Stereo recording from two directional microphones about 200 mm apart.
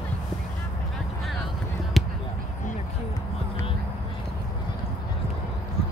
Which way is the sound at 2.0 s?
Centre (ahead or behind).